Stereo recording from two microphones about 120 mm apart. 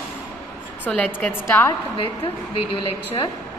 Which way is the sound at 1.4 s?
20° left (ahead or behind).